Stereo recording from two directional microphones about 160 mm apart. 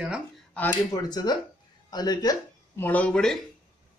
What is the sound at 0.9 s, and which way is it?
Speech, 25° left (ahead or behind).